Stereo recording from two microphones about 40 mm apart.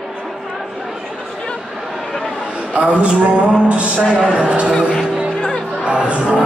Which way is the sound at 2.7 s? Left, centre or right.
Right.